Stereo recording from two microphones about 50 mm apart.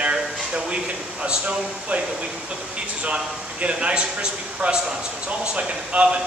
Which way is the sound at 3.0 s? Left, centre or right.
Right.